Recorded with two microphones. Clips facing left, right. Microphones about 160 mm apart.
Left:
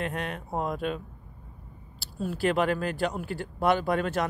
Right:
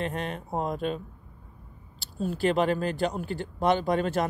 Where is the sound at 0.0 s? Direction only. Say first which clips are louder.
Right 1 dB; centre (ahead or behind).